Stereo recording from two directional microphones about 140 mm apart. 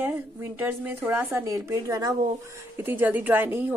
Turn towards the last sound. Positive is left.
turn(degrees=-15)  # may be behind; listen again after turning